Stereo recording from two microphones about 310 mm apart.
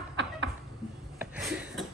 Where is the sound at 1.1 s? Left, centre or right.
Centre.